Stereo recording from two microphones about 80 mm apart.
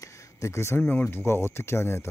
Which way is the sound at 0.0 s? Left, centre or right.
Left.